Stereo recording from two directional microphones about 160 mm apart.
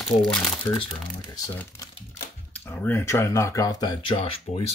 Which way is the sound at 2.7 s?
15° left (ahead or behind).